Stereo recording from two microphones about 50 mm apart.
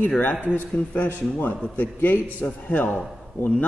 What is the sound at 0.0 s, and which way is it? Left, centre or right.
A man's voice, left.